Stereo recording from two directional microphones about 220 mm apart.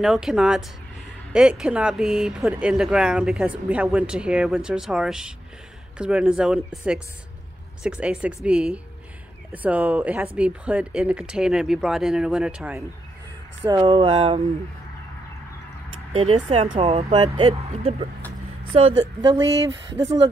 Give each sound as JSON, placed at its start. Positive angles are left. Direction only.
{"t": 0.0, "sound": "speech", "side_deg": 0}
{"t": 13.7, "sound": "speech", "side_deg": -20}
{"t": 16.1, "sound": "speech", "side_deg": -30}